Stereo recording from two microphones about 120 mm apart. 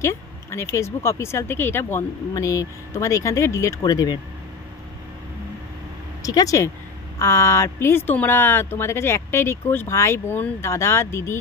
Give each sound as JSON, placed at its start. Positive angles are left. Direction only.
{"t": 0.0, "sound": "speech", "side_deg": 20}
{"t": 6.2, "sound": "speech", "side_deg": 30}